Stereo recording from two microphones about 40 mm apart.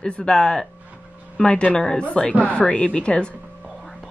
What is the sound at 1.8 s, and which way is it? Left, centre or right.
A woman's voice, centre.